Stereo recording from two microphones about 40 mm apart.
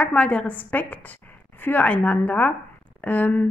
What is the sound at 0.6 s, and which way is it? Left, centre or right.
A woman's voice, left.